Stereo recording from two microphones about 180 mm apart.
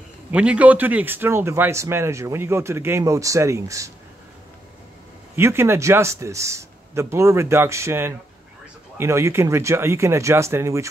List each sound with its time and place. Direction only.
0.3 s speech: 5° right (ahead or behind)
5.3 s speech: 15° right (ahead or behind)